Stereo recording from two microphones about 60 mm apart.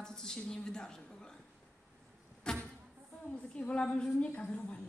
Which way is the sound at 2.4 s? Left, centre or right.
Centre.